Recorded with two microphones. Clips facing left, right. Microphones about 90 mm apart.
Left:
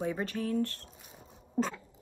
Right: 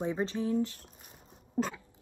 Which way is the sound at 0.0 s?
20° right (ahead or behind).